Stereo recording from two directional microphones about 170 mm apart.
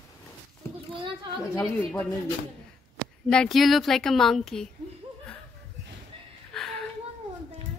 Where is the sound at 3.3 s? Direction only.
5° left (ahead or behind).